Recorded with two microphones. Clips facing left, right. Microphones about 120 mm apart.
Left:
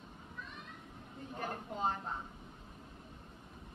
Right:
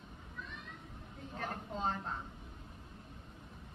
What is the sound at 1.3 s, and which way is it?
Speech, 10° left (ahead or behind).